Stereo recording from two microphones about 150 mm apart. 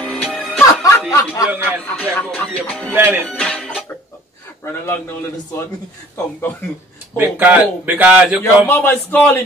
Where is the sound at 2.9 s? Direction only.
15° right (ahead or behind).